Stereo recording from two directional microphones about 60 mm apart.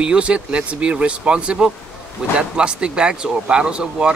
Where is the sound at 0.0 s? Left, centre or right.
Centre.